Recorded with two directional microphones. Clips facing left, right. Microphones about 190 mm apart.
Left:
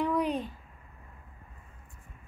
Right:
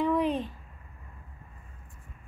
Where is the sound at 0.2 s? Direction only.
Centre (ahead or behind).